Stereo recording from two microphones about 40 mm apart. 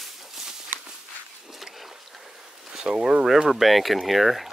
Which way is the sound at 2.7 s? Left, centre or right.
Centre.